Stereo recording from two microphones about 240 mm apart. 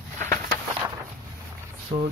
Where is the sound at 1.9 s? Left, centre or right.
Right.